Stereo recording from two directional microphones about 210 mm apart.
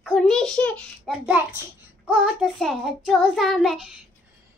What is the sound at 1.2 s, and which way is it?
Speech, 10° right (ahead or behind).